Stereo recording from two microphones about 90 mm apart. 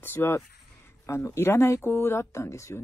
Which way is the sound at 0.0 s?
25° left (ahead or behind).